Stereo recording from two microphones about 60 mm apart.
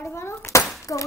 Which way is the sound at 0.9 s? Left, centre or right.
Left.